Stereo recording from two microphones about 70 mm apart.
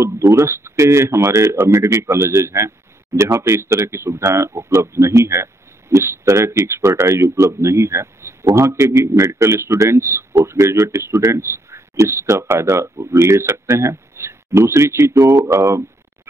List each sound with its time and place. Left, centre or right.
0.0 s a man's voice: right